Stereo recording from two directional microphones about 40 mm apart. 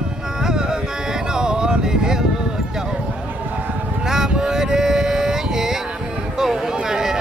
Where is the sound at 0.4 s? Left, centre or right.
Centre.